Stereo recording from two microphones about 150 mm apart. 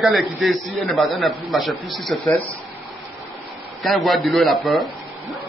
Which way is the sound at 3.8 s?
Centre (ahead or behind).